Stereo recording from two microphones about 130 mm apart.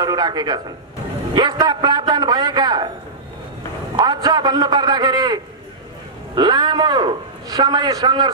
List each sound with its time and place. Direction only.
0.0 s a man's voice: 30° right (ahead or behind)
4.0 s a man's voice: 35° right (ahead or behind)